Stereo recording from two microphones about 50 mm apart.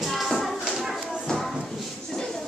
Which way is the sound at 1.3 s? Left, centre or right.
Centre.